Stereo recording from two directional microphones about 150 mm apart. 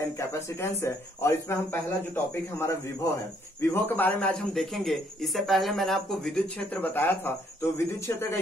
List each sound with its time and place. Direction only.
0.2 s a man's voice: 15° left (ahead or behind)